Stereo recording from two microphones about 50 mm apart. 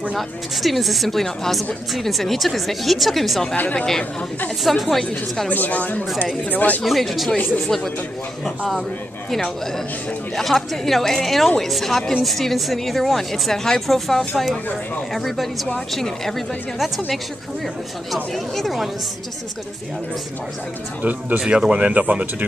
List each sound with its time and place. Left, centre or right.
0.1 s a woman's voice: centre
3.5 s speech: left
4.6 s a woman's voice: centre
5.5 s speech: left
6.8 s a woman's voice: centre
8.5 s a woman's voice: centre
10.3 s a woman's voice: centre
21.0 s speech: right
21.4 s speech: centre